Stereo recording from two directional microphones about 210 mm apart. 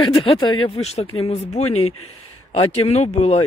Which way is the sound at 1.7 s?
90° left.